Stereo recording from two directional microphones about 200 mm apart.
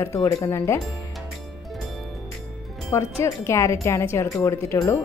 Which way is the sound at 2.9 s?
15° left (ahead or behind).